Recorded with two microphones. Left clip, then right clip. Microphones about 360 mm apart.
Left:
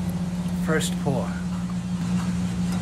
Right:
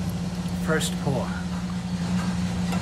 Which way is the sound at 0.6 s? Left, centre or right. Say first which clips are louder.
Even; centre.